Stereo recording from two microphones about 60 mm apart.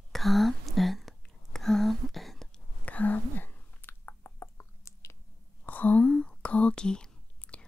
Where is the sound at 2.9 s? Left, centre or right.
Left.